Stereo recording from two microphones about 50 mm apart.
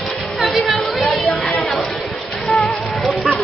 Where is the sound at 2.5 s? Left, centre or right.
Centre.